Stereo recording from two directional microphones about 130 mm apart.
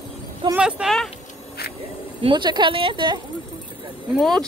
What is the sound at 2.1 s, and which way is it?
Speech, 40° right (ahead or behind).